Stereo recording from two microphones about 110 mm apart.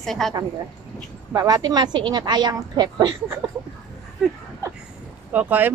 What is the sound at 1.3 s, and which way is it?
A woman's voice, 35° right (ahead or behind).